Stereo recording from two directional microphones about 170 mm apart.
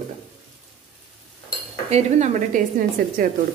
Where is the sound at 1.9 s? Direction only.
45° right (ahead or behind).